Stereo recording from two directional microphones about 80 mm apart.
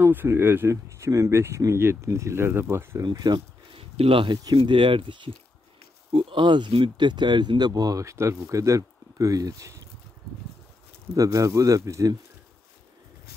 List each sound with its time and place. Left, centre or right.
0.0 s speech: right
3.0 s speech: right
4.2 s speech: right
6.3 s speech: right
11.1 s speech: right